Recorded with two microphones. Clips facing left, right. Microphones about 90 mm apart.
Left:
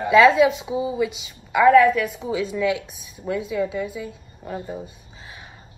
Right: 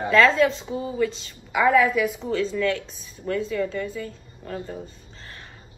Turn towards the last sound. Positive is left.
turn(degrees=10)  # may be behind; listen again after turning